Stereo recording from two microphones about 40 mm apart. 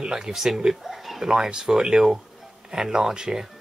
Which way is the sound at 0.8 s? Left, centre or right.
Centre.